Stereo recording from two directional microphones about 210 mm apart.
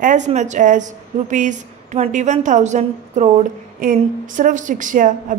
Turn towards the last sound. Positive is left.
turn(degrees=-40)  # may be behind; listen again after turning